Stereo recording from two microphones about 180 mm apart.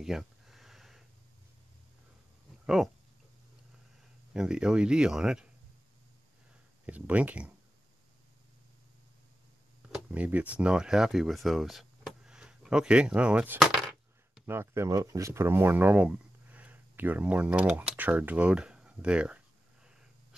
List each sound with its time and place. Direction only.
0.0 s a sound: centre (ahead or behind)
2.6 s speech: centre (ahead or behind)
4.3 s speech: 5° right (ahead or behind)
6.9 s speech: 10° right (ahead or behind)
9.9 s speech: 10° right (ahead or behind)
14.4 s speech: 15° right (ahead or behind)